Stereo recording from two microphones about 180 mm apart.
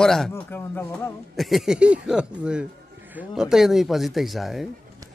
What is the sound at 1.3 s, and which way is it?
Speech, centre (ahead or behind).